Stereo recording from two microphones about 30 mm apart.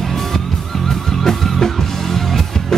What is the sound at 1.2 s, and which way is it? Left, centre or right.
Music, centre.